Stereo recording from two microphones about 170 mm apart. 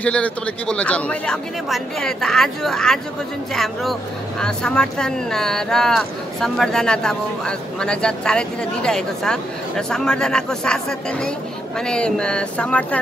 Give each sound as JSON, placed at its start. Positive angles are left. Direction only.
{"t": 0.0, "sound": "speech", "side_deg": 5}